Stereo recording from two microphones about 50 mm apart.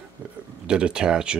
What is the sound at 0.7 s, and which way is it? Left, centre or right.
Speech, centre.